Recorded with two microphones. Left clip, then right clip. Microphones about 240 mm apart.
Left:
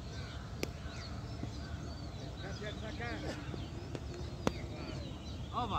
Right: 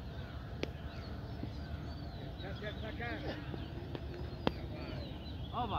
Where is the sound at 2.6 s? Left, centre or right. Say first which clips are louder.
Even; left.